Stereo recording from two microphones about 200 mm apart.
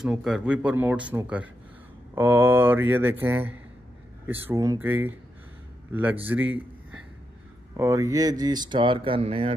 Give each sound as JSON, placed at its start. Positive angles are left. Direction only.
{"t": 0.0, "sound": "a man's voice", "side_deg": 0}
{"t": 7.7, "sound": "speech", "side_deg": -15}